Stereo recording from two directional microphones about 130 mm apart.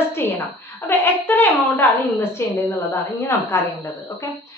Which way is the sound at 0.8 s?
15° left (ahead or behind).